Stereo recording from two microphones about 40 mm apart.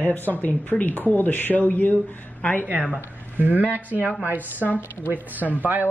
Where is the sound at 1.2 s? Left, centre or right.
Left.